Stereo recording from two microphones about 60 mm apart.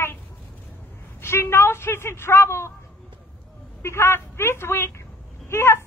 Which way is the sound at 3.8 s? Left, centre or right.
Left.